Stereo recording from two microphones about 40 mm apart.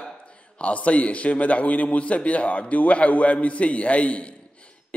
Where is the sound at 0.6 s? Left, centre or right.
Left.